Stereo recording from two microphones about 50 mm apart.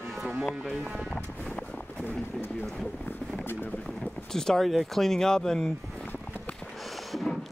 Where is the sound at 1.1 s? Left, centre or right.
Left.